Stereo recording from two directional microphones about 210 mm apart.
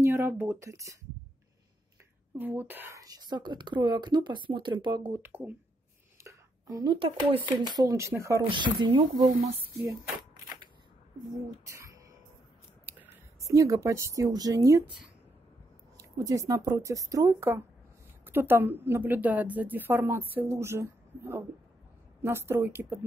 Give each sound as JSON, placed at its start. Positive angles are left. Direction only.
{"t": 0.0, "sound": "speech", "side_deg": -10}
{"t": 2.3, "sound": "speech", "side_deg": -10}
{"t": 12.8, "sound": "speech", "side_deg": -10}
{"t": 16.0, "sound": "a woman's voice", "side_deg": -15}